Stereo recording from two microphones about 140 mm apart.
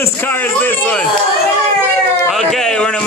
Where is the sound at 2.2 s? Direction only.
Centre (ahead or behind).